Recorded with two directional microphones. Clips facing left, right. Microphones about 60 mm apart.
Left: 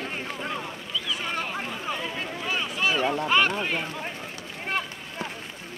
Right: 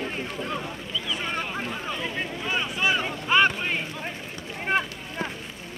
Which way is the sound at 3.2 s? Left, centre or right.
Centre.